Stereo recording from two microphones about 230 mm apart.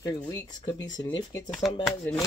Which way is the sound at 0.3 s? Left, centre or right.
Centre.